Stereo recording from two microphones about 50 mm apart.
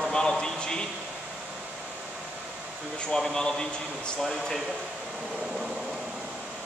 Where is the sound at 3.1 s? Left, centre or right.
Centre.